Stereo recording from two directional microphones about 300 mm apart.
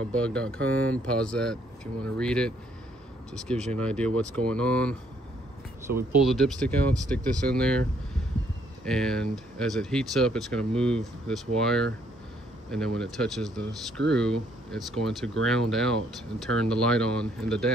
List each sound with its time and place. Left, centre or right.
0.1 s speech: centre
6.2 s speech: centre
8.8 s speech: centre